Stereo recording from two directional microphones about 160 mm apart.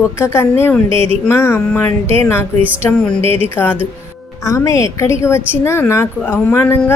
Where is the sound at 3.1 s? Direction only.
35° right (ahead or behind).